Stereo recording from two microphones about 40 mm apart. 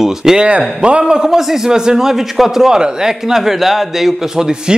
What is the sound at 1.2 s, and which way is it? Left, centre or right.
A man's voice, centre.